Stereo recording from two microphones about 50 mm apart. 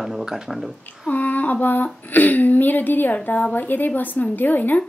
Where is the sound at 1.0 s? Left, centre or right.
Left.